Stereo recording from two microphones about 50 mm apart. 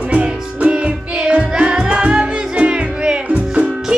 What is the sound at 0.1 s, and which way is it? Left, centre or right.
Music, right.